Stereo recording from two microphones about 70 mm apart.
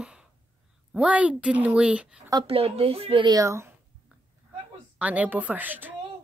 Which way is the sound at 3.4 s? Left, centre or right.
Right.